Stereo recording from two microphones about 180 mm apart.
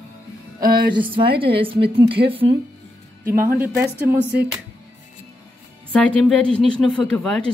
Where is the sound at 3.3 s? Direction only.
10° right (ahead or behind).